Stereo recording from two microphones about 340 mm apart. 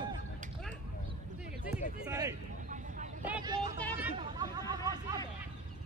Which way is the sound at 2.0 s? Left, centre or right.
Centre.